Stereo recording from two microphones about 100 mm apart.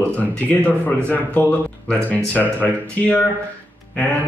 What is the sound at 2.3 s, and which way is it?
Speech, 15° left (ahead or behind).